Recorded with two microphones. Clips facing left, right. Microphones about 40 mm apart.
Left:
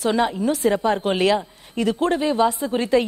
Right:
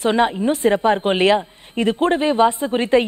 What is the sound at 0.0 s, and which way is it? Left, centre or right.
A woman's voice, right.